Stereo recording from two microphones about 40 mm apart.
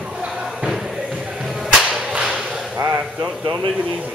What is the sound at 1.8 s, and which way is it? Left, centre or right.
Whip, centre.